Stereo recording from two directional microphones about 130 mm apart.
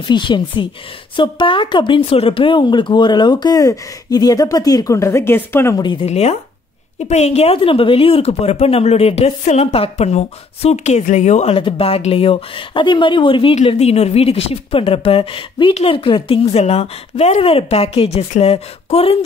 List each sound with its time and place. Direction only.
0.1 s speech: 40° left (ahead or behind); by 5.8 s 20° left (ahead or behind)
5.8 s speech: 35° left (ahead or behind)
6.0 s speech: 55° left (ahead or behind)
11.5 s speech: 45° left (ahead or behind)
13.7 s speech: 55° left (ahead or behind)